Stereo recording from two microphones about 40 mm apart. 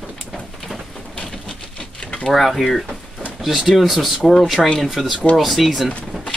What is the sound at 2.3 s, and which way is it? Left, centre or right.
Speech, centre.